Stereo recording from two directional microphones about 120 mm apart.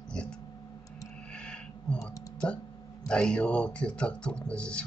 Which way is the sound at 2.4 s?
10° left (ahead or behind).